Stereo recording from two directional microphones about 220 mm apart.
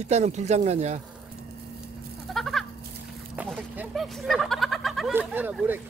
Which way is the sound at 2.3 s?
Centre (ahead or behind).